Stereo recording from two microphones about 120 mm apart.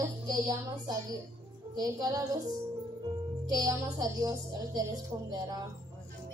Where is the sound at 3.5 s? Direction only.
30° right (ahead or behind).